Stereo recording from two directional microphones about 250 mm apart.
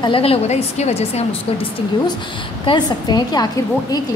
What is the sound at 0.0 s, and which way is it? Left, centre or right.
A woman's voice, left.